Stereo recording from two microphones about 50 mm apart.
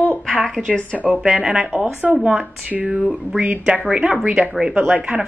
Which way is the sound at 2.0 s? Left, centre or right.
Right.